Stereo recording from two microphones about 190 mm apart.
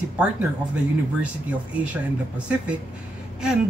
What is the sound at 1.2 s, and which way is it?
Speech, 5° right (ahead or behind).